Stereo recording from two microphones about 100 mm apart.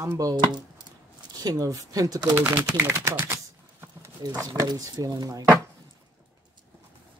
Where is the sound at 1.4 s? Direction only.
35° right (ahead or behind).